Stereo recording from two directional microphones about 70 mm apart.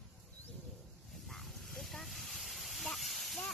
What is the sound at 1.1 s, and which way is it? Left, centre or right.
Hiss, centre.